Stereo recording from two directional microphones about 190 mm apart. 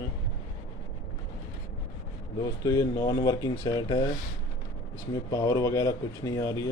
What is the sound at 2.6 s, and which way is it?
Speech, 20° left (ahead or behind).